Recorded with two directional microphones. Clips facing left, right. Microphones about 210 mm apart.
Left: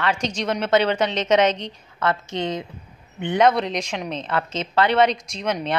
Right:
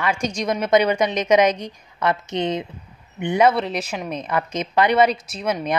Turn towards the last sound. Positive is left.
turn(degrees=-10)  # may be behind; listen again after turning